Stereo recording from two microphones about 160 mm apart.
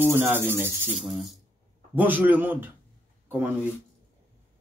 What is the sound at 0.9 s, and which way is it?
Speech, centre (ahead or behind).